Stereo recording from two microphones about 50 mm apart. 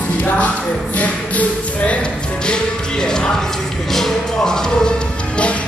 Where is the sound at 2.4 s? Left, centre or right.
Centre.